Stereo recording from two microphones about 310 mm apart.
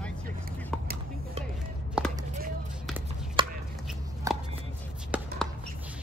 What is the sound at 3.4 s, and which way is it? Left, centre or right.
Chopping, centre.